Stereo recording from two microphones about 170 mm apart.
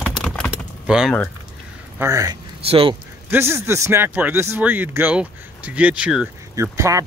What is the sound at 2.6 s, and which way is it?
Speech, 30° right (ahead or behind).